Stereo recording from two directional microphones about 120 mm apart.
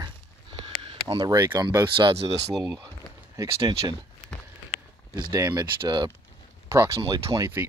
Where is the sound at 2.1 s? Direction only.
60° right (ahead or behind).